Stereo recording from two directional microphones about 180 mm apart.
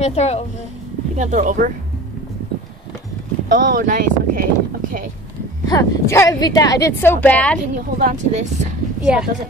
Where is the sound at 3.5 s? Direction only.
50° right (ahead or behind).